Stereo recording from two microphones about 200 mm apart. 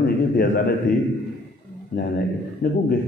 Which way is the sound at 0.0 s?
50° left (ahead or behind).